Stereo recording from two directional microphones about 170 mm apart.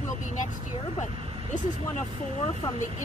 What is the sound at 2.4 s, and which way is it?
Speech, 40° left (ahead or behind).